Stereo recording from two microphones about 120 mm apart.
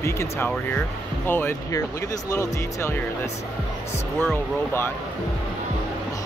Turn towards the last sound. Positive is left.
turn(degrees=20)  # may be behind; listen again after turning